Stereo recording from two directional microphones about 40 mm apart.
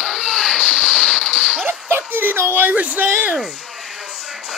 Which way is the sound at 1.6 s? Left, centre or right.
Right.